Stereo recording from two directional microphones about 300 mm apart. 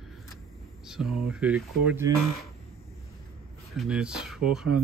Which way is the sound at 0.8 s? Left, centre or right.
Centre.